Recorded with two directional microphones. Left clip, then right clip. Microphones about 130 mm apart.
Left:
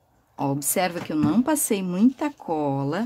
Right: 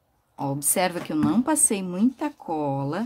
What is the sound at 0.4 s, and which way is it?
Speech, 20° left (ahead or behind).